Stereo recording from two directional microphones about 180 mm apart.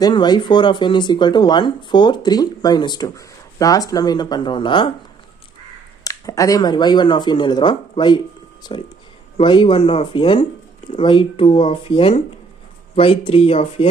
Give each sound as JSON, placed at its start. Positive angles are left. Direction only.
{"t": 0.0, "sound": "speech", "side_deg": 25}
{"t": 6.0, "sound": "speech", "side_deg": 20}
{"t": 9.4, "sound": "speech", "side_deg": 25}